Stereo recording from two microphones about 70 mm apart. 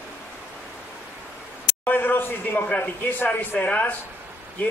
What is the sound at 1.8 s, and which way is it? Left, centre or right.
Speech, left.